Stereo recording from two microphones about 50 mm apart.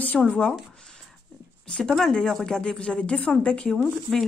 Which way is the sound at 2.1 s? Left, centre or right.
Centre.